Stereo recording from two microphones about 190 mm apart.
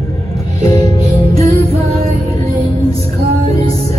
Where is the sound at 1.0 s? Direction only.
35° right (ahead or behind).